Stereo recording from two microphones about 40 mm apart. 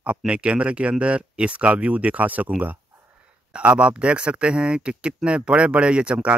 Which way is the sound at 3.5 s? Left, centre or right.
Right.